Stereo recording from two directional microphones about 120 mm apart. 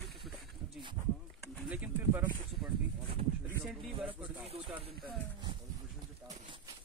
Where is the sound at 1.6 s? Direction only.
10° right (ahead or behind).